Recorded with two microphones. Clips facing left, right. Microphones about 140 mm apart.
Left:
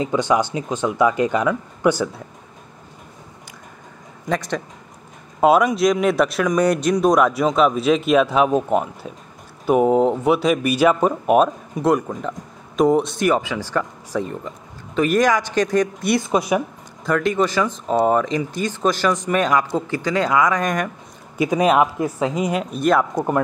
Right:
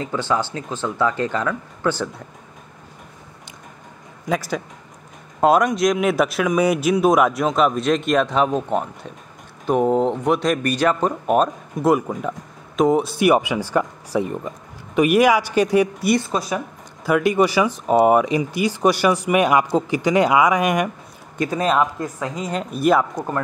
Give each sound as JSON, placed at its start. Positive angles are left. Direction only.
{"t": 0.0, "sound": "speech", "side_deg": 15}
{"t": 4.3, "sound": "speech", "side_deg": -5}
{"t": 16.3, "sound": "speech", "side_deg": 15}
{"t": 17.0, "sound": "speech", "side_deg": -10}
{"t": 21.4, "sound": "speech", "side_deg": 15}
{"t": 22.5, "sound": "speech", "side_deg": 0}
{"t": 23.1, "sound": "speech", "side_deg": 20}